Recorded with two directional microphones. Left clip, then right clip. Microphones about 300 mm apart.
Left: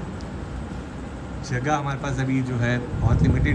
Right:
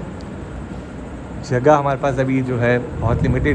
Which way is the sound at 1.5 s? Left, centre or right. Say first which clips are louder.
Right 11 dB; centre.